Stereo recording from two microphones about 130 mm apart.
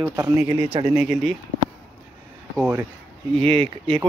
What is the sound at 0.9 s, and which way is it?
Speech, centre (ahead or behind).